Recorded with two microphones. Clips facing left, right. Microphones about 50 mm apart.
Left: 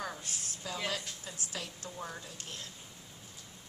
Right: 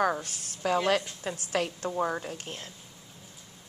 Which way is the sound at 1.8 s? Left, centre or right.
Right.